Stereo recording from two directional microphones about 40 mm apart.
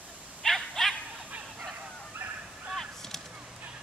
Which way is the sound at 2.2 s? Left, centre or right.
Right.